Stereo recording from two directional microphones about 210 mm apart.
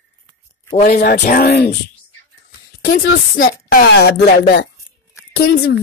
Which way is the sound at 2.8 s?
45° left (ahead or behind).